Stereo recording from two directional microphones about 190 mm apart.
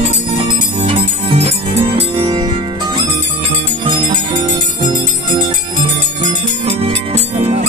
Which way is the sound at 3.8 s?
25° right (ahead or behind).